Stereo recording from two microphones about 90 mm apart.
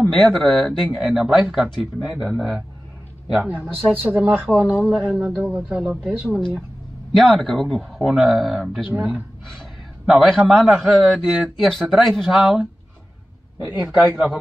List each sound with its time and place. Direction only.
0.2 s a man's voice: centre (ahead or behind); by 5.9 s 15° right (ahead or behind)
5.9 s a man's voice: 5° right (ahead or behind)
8.9 s speech: 20° right (ahead or behind)
10.0 s a man's voice: 5° right (ahead or behind)
14.0 s speech: 10° right (ahead or behind)